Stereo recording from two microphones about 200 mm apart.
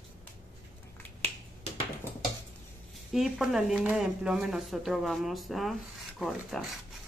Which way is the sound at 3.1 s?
Centre (ahead or behind).